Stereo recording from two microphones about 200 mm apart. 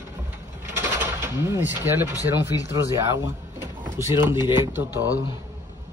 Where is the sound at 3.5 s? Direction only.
10° right (ahead or behind).